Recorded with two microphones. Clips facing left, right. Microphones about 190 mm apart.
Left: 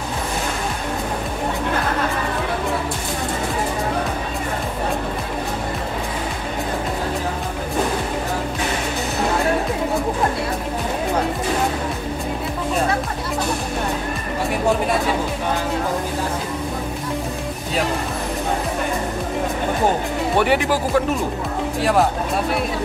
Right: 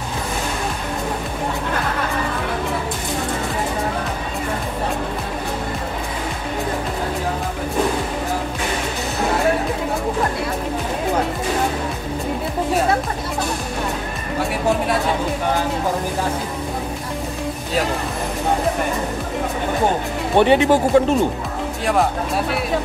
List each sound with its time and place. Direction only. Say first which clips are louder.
20.3 s speech: right 6 dB; 25° right (ahead or behind)